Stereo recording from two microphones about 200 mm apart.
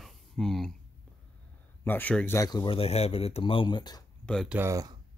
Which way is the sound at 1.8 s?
10° left (ahead or behind).